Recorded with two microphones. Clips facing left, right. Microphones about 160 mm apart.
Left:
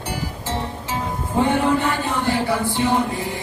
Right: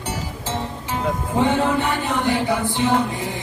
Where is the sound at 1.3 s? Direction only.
15° right (ahead or behind).